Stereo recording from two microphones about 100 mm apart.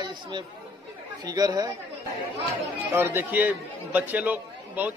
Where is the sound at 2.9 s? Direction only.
20° right (ahead or behind).